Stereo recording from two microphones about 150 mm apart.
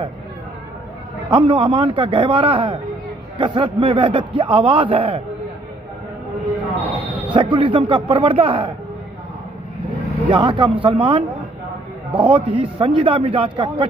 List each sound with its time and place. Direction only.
1.3 s a man's voice: 35° right (ahead or behind)
7.1 s a sound: 10° right (ahead or behind)
7.3 s a man's voice: 35° right (ahead or behind)
10.2 s a man's voice: 30° right (ahead or behind)